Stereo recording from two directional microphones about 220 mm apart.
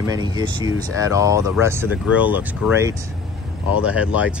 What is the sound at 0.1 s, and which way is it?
Speech, 20° right (ahead or behind).